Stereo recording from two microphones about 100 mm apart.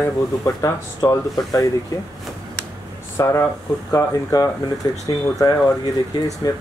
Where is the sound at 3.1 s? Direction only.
30° left (ahead or behind).